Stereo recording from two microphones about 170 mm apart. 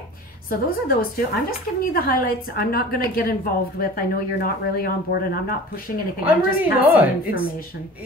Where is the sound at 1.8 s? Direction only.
60° left (ahead or behind).